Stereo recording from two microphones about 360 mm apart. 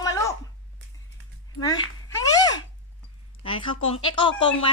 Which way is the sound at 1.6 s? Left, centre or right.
Centre.